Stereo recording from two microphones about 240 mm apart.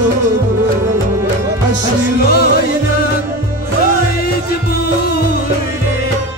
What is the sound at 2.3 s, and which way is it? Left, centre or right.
Music, left.